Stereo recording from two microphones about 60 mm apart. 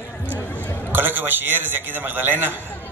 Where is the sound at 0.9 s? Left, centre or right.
Right.